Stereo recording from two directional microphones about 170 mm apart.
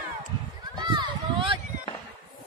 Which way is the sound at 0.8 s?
25° right (ahead or behind).